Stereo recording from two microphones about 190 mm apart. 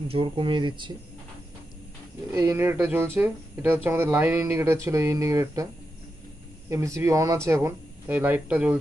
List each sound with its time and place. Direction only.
0.1 s speech: 25° right (ahead or behind)
2.3 s speech: 15° right (ahead or behind)
6.7 s speech: 15° right (ahead or behind)